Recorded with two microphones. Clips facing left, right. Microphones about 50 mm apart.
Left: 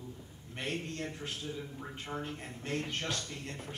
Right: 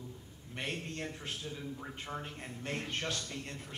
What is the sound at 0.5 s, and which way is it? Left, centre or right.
Speech, right.